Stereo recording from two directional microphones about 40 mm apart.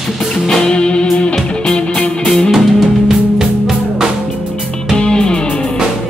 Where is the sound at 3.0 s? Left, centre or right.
Centre.